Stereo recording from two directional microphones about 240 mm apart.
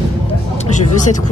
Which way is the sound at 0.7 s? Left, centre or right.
Left.